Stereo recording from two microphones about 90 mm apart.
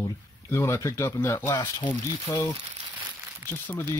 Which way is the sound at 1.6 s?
65° left (ahead or behind).